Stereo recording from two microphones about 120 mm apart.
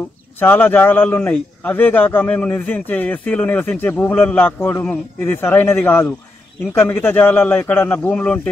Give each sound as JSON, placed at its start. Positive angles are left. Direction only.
{"t": 0.4, "sound": "a man's voice", "side_deg": 15}